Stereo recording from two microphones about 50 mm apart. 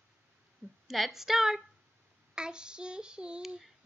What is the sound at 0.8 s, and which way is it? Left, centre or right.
A woman's voice, centre.